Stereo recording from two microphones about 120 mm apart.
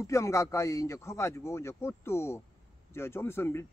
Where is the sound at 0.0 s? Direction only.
25° left (ahead or behind).